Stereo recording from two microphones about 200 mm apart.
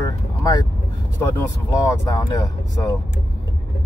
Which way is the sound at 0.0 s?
20° left (ahead or behind).